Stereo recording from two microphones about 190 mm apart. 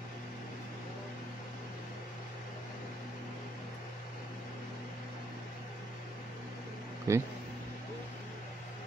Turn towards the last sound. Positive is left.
turn(degrees=-15)  # may be behind; listen again after turning